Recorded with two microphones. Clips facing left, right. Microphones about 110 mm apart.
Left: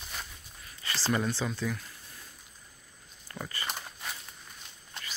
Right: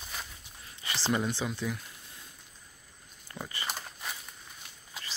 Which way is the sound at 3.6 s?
Centre (ahead or behind).